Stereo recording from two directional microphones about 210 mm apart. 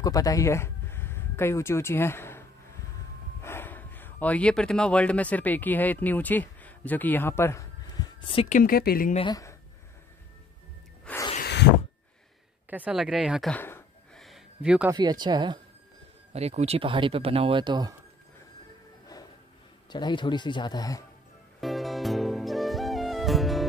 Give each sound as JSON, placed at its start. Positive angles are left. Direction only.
{"t": 0.0, "sound": "speech", "side_deg": 15}
{"t": 3.4, "sound": "speech", "side_deg": 10}
{"t": 8.5, "sound": "speech", "side_deg": 45}
{"t": 9.1, "sound": "speech", "side_deg": 20}
{"t": 11.3, "sound": "a sound", "side_deg": 50}
{"t": 12.6, "sound": "speech", "side_deg": -5}
{"t": 14.2, "sound": "a sound", "side_deg": -5}
{"t": 14.9, "sound": "speech", "side_deg": -20}
{"t": 19.9, "sound": "a man's voice", "side_deg": 20}
{"t": 21.5, "sound": "music", "side_deg": 0}